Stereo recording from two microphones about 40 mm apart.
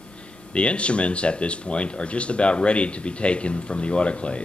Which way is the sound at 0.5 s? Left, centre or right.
Left.